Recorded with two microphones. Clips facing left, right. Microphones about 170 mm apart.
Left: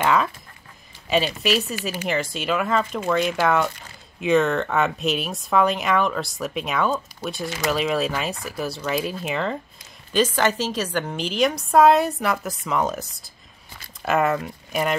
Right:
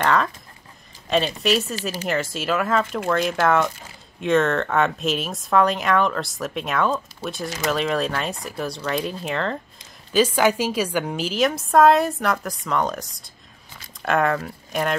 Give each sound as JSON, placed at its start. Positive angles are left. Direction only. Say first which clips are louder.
{"t": 0.0, "sound": "speech", "louder": "even", "side_deg": 5}
{"t": 10.1, "sound": "speech", "louder": "right 2 dB", "side_deg": -10}